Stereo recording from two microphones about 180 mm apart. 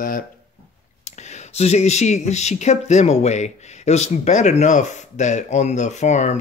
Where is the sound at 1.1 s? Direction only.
40° left (ahead or behind).